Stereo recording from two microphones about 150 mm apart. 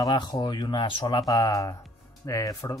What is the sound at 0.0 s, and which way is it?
Speech, 30° left (ahead or behind).